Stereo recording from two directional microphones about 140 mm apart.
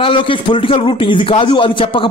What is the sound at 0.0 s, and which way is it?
A man's voice, 40° left (ahead or behind).